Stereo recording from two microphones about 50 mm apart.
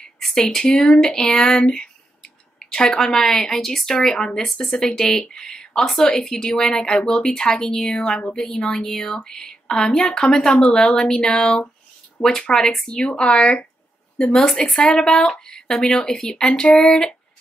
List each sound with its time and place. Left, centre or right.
0.0 s speech: centre